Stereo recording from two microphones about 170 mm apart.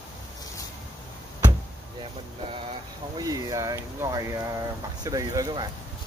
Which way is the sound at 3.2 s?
20° right (ahead or behind).